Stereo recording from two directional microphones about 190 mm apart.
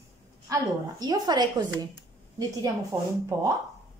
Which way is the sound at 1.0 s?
20° right (ahead or behind).